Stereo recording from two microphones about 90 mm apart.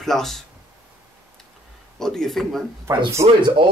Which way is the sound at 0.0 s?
5° left (ahead or behind).